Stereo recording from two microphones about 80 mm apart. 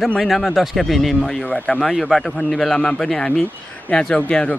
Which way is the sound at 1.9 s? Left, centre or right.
Centre.